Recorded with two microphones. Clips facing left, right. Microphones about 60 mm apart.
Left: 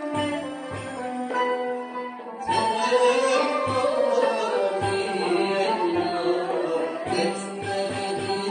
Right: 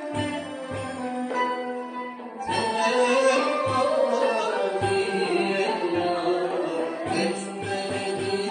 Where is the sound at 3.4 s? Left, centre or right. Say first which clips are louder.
Even; left.